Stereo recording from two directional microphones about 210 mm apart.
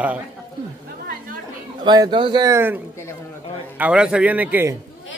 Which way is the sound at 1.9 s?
20° right (ahead or behind).